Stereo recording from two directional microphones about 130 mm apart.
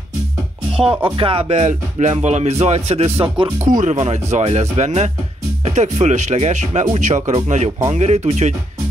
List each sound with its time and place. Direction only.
1.0 s speech: 45° right (ahead or behind)
3.6 s speech: 70° right (ahead or behind)